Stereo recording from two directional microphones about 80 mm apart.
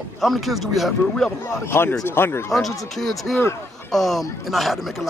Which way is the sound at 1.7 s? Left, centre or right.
Left.